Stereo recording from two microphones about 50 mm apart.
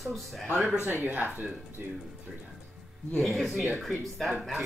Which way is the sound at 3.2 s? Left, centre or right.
Centre.